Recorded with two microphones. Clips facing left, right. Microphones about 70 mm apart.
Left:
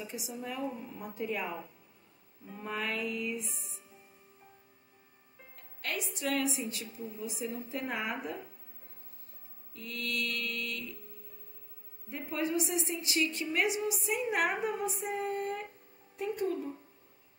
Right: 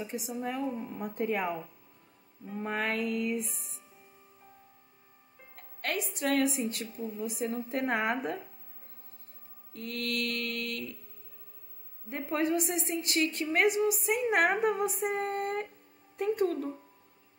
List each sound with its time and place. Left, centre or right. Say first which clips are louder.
0.0 s a woman's voice: right 5 dB; right
2.6 s a woman's voice: right 4 dB; right
3.4 s speech: even; centre
5.6 s music: right 4 dB; right
6.1 s a woman's voice: right 5 dB; right
9.8 s a woman's voice: right 3 dB; right
12.1 s a woman's voice: right 4 dB; right